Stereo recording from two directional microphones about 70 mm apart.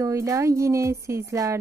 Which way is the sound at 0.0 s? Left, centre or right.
Right.